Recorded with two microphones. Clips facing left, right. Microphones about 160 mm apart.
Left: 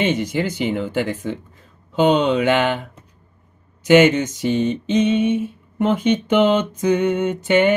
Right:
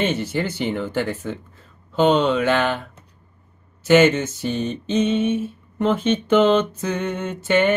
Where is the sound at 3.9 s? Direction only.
15° left (ahead or behind).